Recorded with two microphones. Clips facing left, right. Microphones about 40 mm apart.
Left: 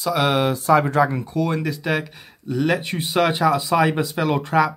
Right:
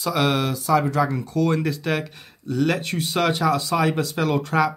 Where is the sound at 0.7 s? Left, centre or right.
Left.